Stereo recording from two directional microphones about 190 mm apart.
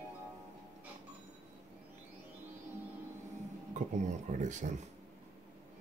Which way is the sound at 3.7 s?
40° right (ahead or behind).